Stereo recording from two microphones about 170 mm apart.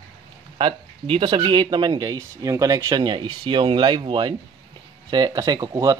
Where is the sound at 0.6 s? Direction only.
30° right (ahead or behind).